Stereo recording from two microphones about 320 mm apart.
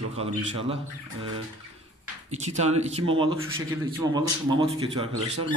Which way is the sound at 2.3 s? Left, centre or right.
Right.